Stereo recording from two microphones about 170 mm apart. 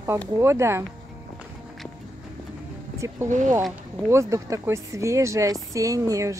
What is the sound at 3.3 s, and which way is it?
Speech, 45° right (ahead or behind).